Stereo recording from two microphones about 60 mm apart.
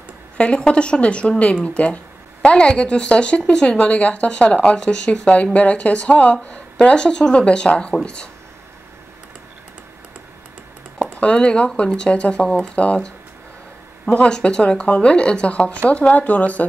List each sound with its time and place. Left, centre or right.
0.4 s speech: centre
11.1 s speech: centre